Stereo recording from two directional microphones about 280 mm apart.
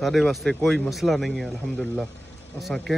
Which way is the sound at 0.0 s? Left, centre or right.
Centre.